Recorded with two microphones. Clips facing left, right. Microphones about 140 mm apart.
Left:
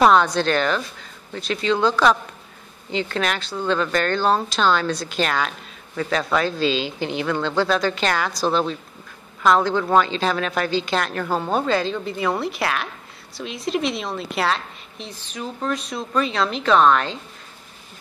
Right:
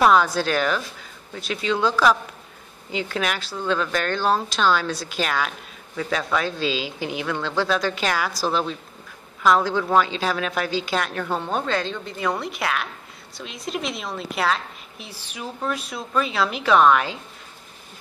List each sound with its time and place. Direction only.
0.0 s a woman's voice: 5° right (ahead or behind)